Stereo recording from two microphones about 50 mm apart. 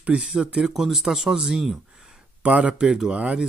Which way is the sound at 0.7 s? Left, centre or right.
Centre.